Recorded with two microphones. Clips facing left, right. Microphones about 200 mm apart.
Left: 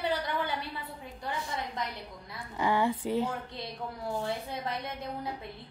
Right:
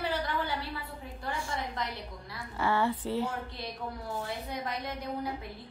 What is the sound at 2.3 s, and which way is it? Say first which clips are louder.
A woman's voice: left 1 dB; 15° left (ahead or behind).